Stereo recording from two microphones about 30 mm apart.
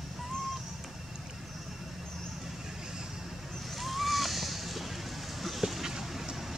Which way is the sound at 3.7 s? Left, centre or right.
Centre.